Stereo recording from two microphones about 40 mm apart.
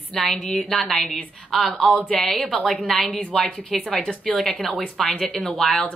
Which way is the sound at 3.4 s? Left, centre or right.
Left.